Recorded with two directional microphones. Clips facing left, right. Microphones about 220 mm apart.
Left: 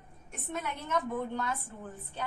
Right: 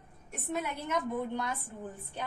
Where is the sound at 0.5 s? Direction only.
10° right (ahead or behind).